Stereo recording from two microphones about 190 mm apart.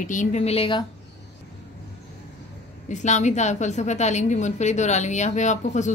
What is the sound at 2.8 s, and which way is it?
A woman's voice, 40° left (ahead or behind).